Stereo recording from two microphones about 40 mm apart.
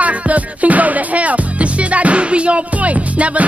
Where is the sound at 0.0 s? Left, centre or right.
Right.